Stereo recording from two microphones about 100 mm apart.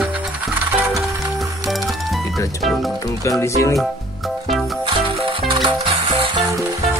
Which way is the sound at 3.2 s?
30° left (ahead or behind).